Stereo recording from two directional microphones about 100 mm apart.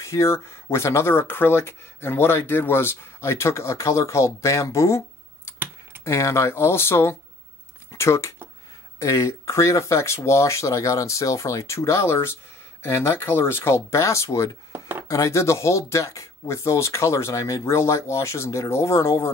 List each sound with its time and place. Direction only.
0.0 s speech: 30° left (ahead or behind)
14.7 s chopping: 20° right (ahead or behind)
15.0 s speech: 30° left (ahead or behind)